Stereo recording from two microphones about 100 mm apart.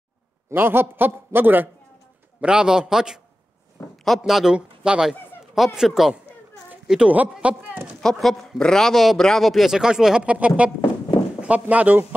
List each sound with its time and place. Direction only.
0.5 s a man's voice: 20° right (ahead or behind)
2.4 s speech: 5° right (ahead or behind)
4.2 s a man's voice: 5° right (ahead or behind)
8.0 s speech: 5° left (ahead or behind); by 12.1 s 15° right (ahead or behind)